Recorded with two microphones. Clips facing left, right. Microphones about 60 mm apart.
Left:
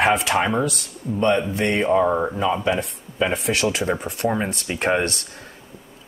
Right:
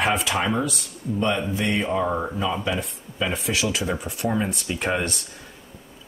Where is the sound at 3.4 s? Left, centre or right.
Left.